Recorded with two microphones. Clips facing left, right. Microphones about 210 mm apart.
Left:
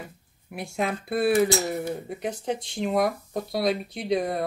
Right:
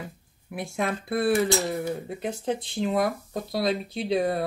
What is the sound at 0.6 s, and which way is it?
Speech, centre (ahead or behind).